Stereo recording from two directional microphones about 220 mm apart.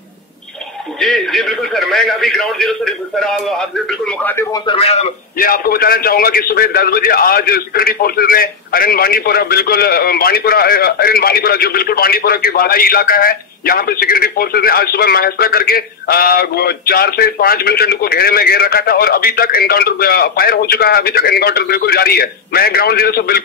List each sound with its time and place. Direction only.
0.9 s a man's voice: centre (ahead or behind)
4.6 s a man's voice: 25° left (ahead or behind)
5.4 s a man's voice: 40° left (ahead or behind)